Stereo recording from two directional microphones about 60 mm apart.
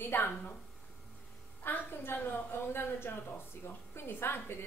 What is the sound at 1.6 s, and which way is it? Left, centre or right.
A woman's voice, left.